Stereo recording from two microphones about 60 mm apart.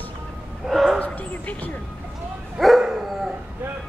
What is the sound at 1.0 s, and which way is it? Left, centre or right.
Dog, left.